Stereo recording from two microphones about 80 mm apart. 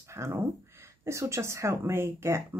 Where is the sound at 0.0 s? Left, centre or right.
Right.